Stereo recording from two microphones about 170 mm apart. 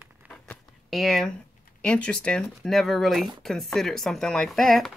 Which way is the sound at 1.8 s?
5° left (ahead or behind).